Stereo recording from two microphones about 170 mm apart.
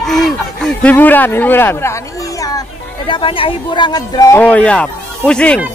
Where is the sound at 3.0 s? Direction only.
30° left (ahead or behind).